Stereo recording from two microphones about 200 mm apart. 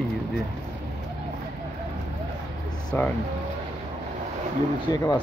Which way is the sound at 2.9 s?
10° left (ahead or behind).